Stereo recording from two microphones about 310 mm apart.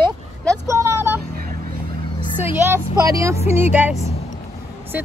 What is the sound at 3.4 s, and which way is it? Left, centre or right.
Speech, left.